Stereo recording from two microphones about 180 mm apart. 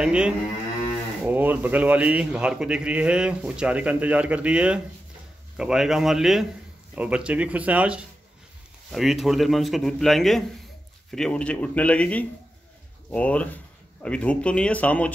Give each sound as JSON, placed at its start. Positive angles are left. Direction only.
{"t": 0.0, "sound": "a man's voice", "side_deg": -5}